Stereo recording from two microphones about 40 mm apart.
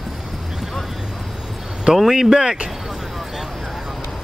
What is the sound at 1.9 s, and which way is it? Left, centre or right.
Speech, centre.